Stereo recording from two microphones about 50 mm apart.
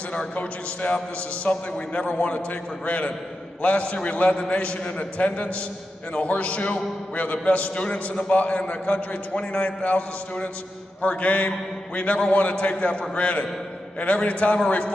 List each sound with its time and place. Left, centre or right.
0.1 s a man's voice: left